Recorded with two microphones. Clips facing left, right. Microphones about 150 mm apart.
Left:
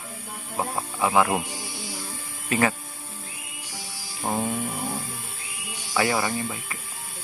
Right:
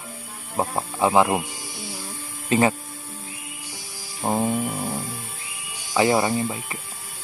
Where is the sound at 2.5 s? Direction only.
30° right (ahead or behind).